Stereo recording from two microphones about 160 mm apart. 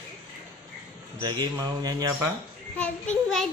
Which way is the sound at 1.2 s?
25° right (ahead or behind).